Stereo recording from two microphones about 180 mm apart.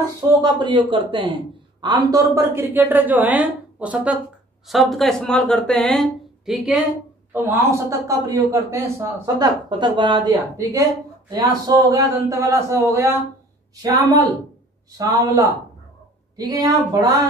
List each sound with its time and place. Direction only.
0.3 s a woman's voice: 25° right (ahead or behind); by 6.8 s centre (ahead or behind)
7.3 s a woman's voice: 15° right (ahead or behind)